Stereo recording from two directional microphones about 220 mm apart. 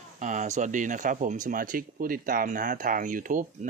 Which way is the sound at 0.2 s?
35° right (ahead or behind).